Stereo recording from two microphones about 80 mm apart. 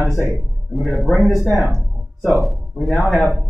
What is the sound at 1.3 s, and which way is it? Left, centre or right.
Speech, left.